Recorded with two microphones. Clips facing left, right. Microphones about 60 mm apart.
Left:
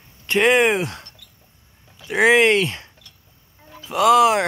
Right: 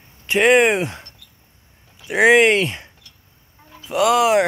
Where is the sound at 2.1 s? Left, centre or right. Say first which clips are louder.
Right 2 dB; centre.